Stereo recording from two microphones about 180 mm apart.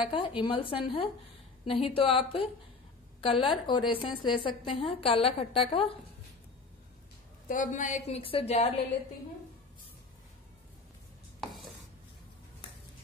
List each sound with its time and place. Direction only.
0.1 s a woman's voice: 30° left (ahead or behind)
7.4 s a woman's voice: 45° left (ahead or behind)